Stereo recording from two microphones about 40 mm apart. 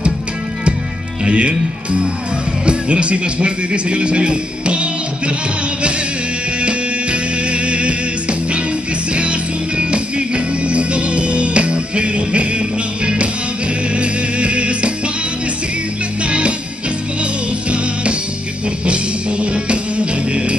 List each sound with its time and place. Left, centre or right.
1.2 s a man's voice: right
6.6 s music: right
16.3 s music: right